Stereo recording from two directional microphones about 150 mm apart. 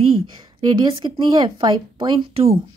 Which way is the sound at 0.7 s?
35° right (ahead or behind).